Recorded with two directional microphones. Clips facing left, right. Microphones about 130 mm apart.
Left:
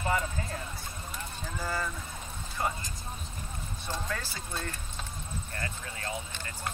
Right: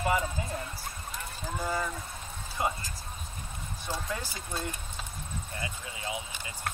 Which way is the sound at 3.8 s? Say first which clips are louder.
Right 1 dB; 15° right (ahead or behind).